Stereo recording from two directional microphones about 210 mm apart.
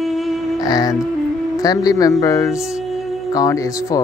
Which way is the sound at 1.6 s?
15° left (ahead or behind).